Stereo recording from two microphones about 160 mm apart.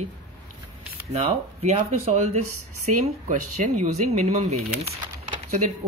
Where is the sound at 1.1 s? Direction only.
45° right (ahead or behind).